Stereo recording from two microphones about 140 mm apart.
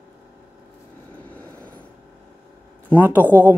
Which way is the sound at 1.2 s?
10° left (ahead or behind).